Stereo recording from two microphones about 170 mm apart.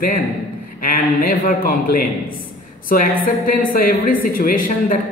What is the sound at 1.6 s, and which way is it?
Speech, 60° left (ahead or behind).